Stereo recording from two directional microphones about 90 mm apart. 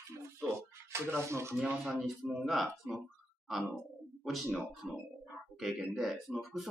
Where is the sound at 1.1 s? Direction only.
30° right (ahead or behind).